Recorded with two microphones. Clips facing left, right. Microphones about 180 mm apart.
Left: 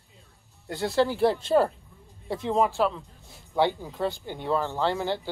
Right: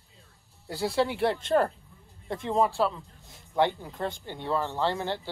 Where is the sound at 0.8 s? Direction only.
Centre (ahead or behind).